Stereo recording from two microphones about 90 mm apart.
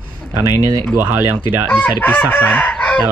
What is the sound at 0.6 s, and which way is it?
Speech, 45° right (ahead or behind).